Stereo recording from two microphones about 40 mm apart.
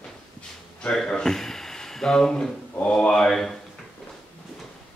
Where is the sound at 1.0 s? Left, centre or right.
Centre.